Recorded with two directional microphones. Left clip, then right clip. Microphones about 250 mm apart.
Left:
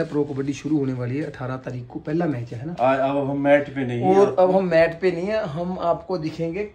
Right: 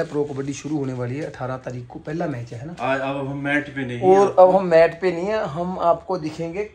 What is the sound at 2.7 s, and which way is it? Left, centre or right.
A man's voice, left.